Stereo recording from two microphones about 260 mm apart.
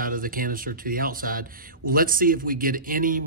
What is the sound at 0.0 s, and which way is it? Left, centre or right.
Speech, right.